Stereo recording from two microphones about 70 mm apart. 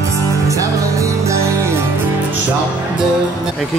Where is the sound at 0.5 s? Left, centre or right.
Right.